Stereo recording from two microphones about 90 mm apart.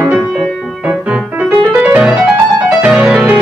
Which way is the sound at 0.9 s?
15° right (ahead or behind).